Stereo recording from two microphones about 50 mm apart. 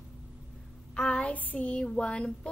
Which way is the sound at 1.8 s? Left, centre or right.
Centre.